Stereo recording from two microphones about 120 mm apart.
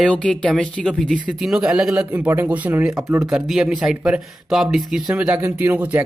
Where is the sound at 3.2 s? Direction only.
5° right (ahead or behind).